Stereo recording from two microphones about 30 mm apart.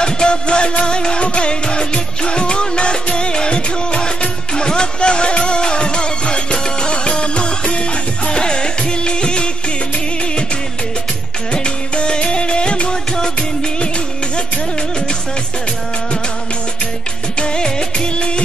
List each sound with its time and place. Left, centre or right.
0.0 s music: left
11.5 s music: left
17.4 s music of bollywood: left